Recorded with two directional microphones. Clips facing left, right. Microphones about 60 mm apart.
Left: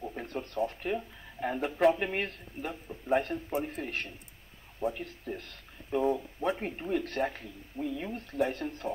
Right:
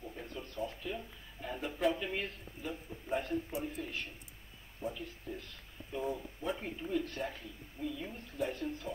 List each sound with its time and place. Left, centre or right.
0.1 s speech: left